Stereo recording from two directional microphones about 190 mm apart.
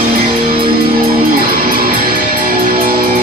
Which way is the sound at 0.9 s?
50° right (ahead or behind).